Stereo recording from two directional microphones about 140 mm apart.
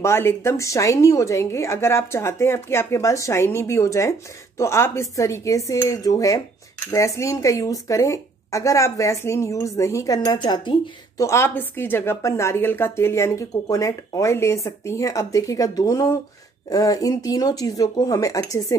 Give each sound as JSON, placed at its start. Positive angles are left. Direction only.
{"t": 0.0, "sound": "a woman's voice", "side_deg": 20}
{"t": 11.2, "sound": "a woman's voice", "side_deg": 15}